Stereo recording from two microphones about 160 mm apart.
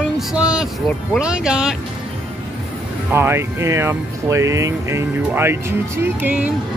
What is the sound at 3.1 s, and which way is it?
Speech, 15° right (ahead or behind).